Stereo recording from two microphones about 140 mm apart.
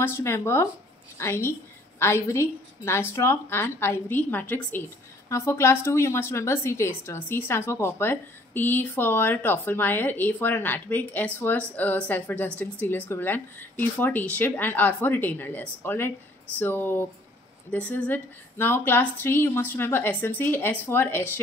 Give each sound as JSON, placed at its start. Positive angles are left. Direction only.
{"t": 0.0, "sound": "a woman's voice", "side_deg": 20}